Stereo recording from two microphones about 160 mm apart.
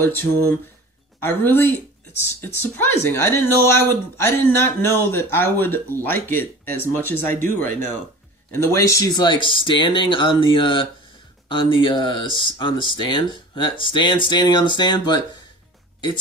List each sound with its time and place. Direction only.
0.0 s speech: 15° left (ahead or behind)